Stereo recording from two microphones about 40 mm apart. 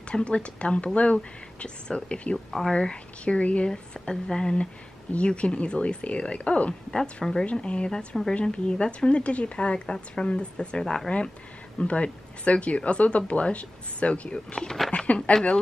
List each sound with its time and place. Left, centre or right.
0.1 s a woman's voice: left
2.3 s speech: centre
2.7 s a woman's voice: left
3.6 s a woman's voice: left
5.1 s a woman's voice: left
7.2 s a woman's voice: left